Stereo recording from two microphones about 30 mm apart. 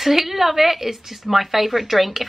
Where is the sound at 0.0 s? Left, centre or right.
Centre.